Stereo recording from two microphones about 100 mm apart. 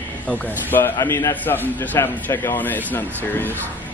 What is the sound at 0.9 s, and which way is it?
A man's voice, 30° left (ahead or behind).